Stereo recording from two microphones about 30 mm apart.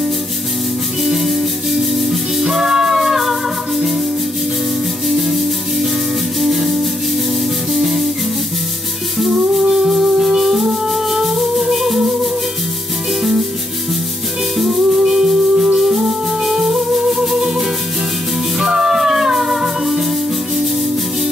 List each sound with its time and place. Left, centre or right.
1.0 s music: centre
5.0 s music: centre
9.8 s music: centre
14.7 s music: centre